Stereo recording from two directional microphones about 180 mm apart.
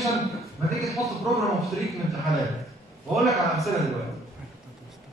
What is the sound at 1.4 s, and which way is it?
A man's voice, centre (ahead or behind).